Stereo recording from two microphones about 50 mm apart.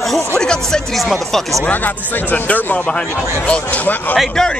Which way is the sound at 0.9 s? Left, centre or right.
Centre.